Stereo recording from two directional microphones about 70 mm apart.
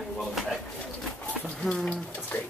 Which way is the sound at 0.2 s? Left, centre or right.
Centre.